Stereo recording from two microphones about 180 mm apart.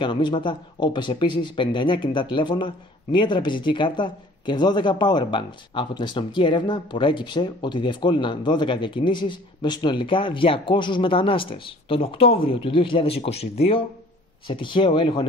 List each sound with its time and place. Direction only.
0.0 s speech: 25° left (ahead or behind)